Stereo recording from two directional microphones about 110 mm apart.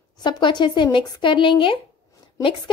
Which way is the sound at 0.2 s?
45° left (ahead or behind).